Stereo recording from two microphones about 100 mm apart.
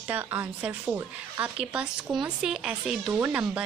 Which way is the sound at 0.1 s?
15° right (ahead or behind).